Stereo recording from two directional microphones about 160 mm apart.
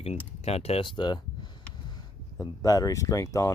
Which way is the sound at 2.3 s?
20° left (ahead or behind).